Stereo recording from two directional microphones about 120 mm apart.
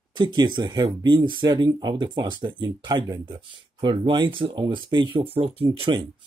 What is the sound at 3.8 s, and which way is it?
Speech, 45° right (ahead or behind).